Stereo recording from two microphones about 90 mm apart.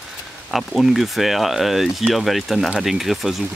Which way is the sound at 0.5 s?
Centre (ahead or behind).